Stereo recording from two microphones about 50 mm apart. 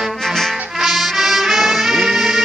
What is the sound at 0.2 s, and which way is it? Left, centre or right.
Music, centre.